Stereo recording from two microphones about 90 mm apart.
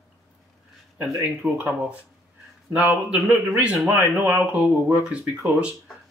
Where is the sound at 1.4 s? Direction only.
15° right (ahead or behind).